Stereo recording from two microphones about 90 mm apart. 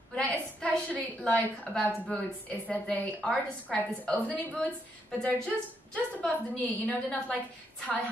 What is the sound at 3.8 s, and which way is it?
A woman's voice, 20° left (ahead or behind).